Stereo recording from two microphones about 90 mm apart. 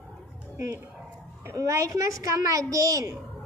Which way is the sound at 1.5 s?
35° right (ahead or behind).